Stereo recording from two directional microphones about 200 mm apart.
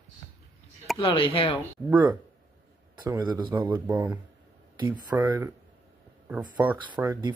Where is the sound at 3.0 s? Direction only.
20° right (ahead or behind).